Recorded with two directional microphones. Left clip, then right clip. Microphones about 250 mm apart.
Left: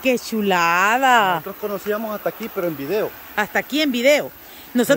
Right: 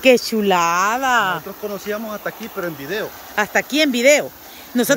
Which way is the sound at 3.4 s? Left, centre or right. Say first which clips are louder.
Right 3 dB; centre.